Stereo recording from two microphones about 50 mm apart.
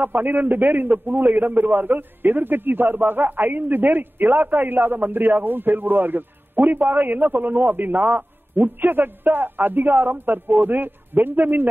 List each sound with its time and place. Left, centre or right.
0.0 s a man's voice: right